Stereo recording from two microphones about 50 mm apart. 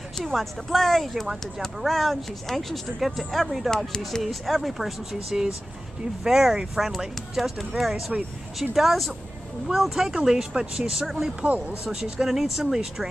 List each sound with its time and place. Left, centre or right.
0.2 s speech: centre
11.4 s speech: right
11.8 s speech: centre